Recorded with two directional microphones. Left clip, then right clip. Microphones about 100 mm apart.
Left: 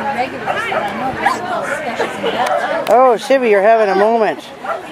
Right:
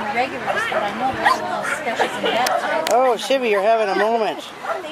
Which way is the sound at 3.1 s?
15° left (ahead or behind).